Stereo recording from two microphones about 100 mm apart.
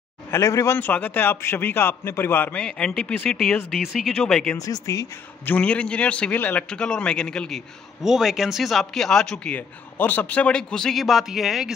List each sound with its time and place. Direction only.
0.3 s speech: 30° left (ahead or behind)
0.7 s a man's voice: 15° left (ahead or behind)
2.6 s a man's voice: 5° left (ahead or behind)
4.6 s speech: 35° left (ahead or behind)
5.4 s a man's voice: 15° left (ahead or behind); by 11.7 s 5° right (ahead or behind)